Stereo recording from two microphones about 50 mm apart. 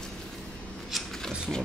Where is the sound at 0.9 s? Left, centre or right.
Centre.